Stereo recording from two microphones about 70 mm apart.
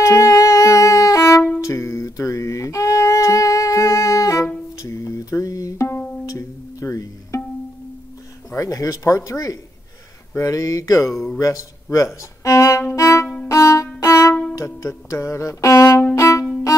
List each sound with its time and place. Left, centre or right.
0.0 s music: left
8.5 s speech: left
12.2 s violin: left
13.9 s music: left
16.2 s violin: left